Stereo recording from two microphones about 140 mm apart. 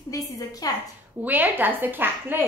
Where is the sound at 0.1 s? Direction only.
25° left (ahead or behind).